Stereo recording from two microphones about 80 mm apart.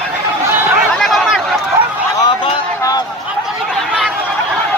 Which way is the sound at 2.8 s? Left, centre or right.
Left.